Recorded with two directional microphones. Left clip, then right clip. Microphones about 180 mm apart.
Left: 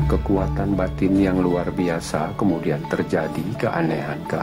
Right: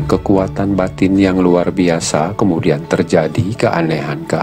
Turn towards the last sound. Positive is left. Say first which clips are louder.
# right 7 dB
turn(degrees=-30)  # may be behind; listen again after turning